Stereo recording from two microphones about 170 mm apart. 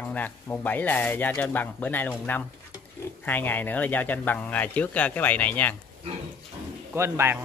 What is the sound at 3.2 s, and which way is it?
Speech, 10° left (ahead or behind).